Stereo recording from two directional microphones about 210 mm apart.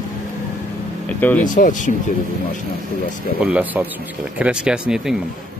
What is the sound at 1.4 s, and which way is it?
Speech, 40° left (ahead or behind).